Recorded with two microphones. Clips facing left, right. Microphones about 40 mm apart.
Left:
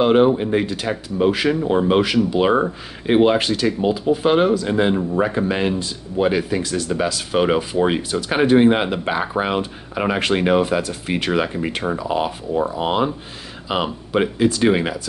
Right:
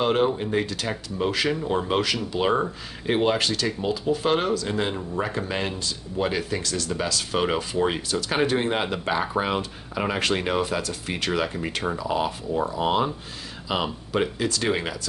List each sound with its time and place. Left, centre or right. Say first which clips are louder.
0.0 s speech: left 7 dB; centre